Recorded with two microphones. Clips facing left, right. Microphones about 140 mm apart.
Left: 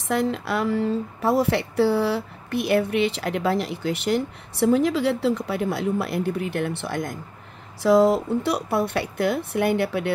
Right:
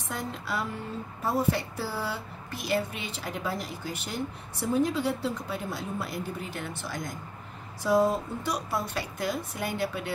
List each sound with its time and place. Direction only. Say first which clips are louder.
0.1 s a woman's voice: left 10 dB; 75° left (ahead or behind); by 7.2 s 60° left (ahead or behind)
7.8 s speech: left 7 dB; 90° left; by 10.1 s 65° left (ahead or behind)